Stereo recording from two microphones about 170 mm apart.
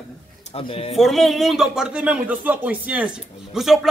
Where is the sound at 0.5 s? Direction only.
35° left (ahead or behind).